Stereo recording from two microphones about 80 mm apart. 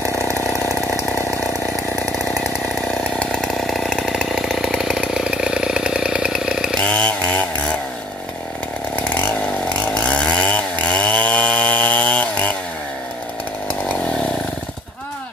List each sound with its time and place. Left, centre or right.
2.1 s chainsaw: centre
3.0 s chainsaw: centre
6.8 s chainsaw: centre
8.9 s chainsaw: left